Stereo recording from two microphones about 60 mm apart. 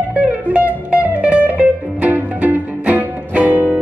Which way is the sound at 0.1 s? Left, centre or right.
Right.